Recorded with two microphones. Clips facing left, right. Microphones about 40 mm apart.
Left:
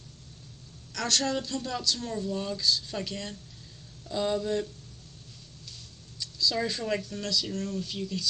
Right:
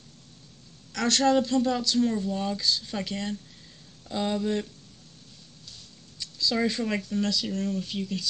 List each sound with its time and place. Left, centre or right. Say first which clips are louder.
0.9 s speech: right 6 dB; right
2.6 s speech: even; right
5.8 s mouse: even; right
6.5 s speech: right 5 dB; right